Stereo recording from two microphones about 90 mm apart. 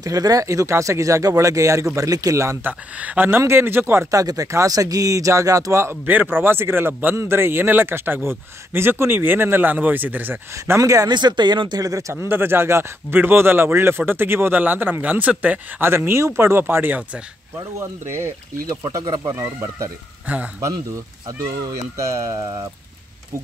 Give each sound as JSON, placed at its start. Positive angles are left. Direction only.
{"t": 0.0, "sound": "speech", "side_deg": -40}
{"t": 3.0, "sound": "a man's voice", "side_deg": -20}
{"t": 4.1, "sound": "a man's voice", "side_deg": -40}
{"t": 10.5, "sound": "speech", "side_deg": -35}
{"t": 11.1, "sound": "speech", "side_deg": -55}
{"t": 11.8, "sound": "a man's voice", "side_deg": -35}
{"t": 18.7, "sound": "speech", "side_deg": -40}
{"t": 20.3, "sound": "speech", "side_deg": -20}
{"t": 20.6, "sound": "speech", "side_deg": -35}